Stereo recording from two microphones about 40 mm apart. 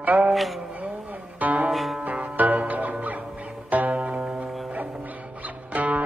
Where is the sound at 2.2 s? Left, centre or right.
Right.